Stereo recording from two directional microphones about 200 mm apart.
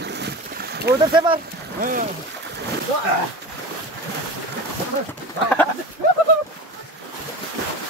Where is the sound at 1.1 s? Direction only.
25° right (ahead or behind).